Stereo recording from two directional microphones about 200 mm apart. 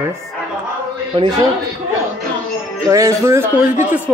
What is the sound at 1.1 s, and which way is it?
Speech, 25° right (ahead or behind).